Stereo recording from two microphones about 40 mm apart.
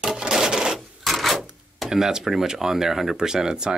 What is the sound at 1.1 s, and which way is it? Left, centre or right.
Cash register, centre.